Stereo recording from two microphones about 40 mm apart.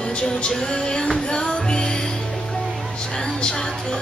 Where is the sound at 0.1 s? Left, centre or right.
Left.